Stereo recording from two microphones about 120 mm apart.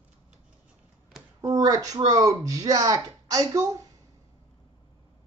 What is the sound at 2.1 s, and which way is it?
Speech, 30° right (ahead or behind).